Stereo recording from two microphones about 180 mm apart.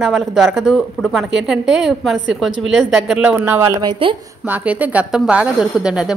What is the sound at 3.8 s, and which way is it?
Speech, 25° right (ahead or behind).